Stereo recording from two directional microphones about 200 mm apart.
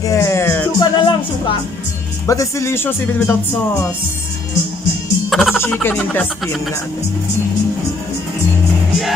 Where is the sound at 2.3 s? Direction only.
15° left (ahead or behind).